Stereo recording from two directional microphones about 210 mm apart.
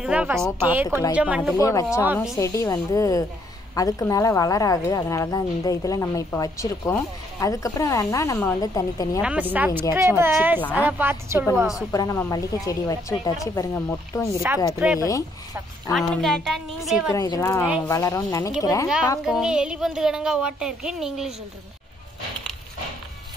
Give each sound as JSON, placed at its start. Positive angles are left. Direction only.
{"t": 0.0, "sound": "speech", "side_deg": -5}
{"t": 0.8, "sound": "a woman's voice", "side_deg": 15}
{"t": 1.1, "sound": "a woman's voice", "side_deg": -5}
{"t": 1.6, "sound": "a woman's voice", "side_deg": 15}
{"t": 9.2, "sound": "a woman's voice", "side_deg": -5}
{"t": 11.9, "sound": "a woman's voice", "side_deg": 15}
{"t": 14.7, "sound": "speech", "side_deg": -5}
{"t": 15.0, "sound": "a woman's voice", "side_deg": 15}
{"t": 15.9, "sound": "speech", "side_deg": 0}
{"t": 17.1, "sound": "a woman's voice", "side_deg": 15}
{"t": 19.2, "sound": "speech", "side_deg": -5}